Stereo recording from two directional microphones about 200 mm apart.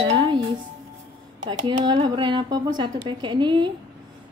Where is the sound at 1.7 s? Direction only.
25° right (ahead or behind).